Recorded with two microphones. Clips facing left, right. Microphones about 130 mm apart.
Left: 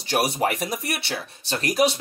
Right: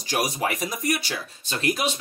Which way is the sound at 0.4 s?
60° left (ahead or behind).